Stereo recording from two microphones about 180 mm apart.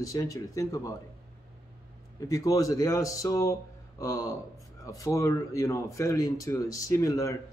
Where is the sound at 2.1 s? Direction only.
20° left (ahead or behind).